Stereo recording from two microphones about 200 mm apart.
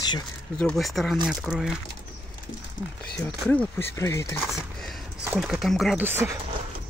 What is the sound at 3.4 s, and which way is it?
Speech, 10° left (ahead or behind).